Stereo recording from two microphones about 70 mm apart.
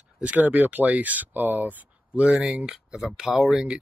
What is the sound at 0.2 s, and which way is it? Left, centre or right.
Speech, centre.